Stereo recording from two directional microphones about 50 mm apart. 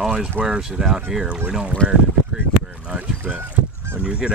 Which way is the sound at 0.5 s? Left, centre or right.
Centre.